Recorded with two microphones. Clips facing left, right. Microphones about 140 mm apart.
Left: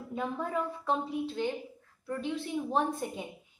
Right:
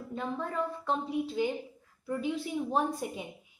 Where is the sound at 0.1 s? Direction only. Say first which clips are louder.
Left 2 dB; 5° left (ahead or behind).